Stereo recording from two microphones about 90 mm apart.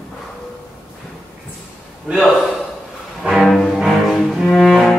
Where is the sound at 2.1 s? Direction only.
15° right (ahead or behind).